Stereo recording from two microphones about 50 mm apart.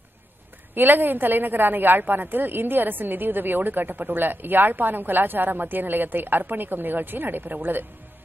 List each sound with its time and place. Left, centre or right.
0.7 s a woman's voice: right